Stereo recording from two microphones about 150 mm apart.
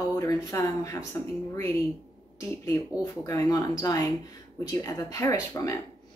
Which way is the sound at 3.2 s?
20° left (ahead or behind).